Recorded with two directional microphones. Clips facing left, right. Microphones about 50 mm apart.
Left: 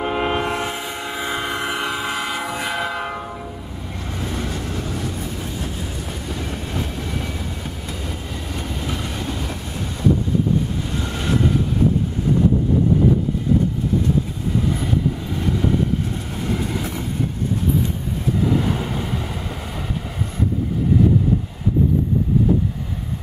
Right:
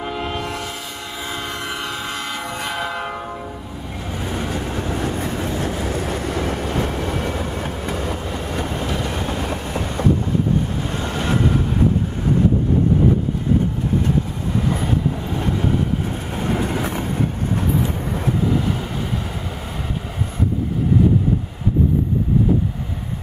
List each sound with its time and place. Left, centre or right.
0.0 s train: left; by 3.2 s centre
4.2 s vehicle: centre
5.0 s train: right
16.1 s vehicle: right